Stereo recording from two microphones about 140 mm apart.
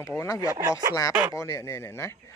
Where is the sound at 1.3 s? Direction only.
20° left (ahead or behind).